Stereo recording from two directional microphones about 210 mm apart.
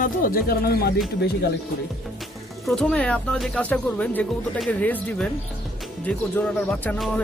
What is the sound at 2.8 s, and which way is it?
Speech, 5° left (ahead or behind).